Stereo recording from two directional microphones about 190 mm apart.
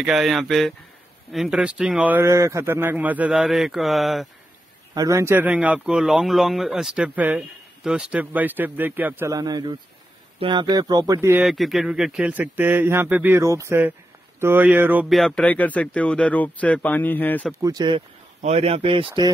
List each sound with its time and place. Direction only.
0.0 s speech: centre (ahead or behind)
4.9 s a man's voice: 15° right (ahead or behind)
11.4 s a man's voice: centre (ahead or behind)
17.6 s a man's voice: 20° right (ahead or behind)
18.4 s a man's voice: 35° right (ahead or behind)